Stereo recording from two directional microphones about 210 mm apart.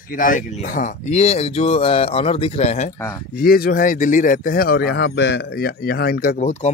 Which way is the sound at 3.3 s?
45° left (ahead or behind).